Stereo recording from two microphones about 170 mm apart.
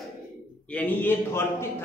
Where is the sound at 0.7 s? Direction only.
10° left (ahead or behind).